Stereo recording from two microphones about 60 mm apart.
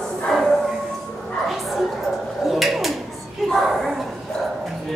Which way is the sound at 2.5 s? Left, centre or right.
Centre.